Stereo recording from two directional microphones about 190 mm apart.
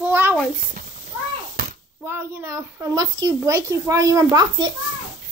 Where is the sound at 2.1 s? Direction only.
15° right (ahead or behind).